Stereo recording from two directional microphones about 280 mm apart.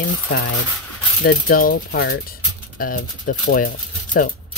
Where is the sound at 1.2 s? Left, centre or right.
Left.